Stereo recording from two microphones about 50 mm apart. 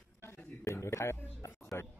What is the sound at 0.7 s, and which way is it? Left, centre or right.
Speech, left.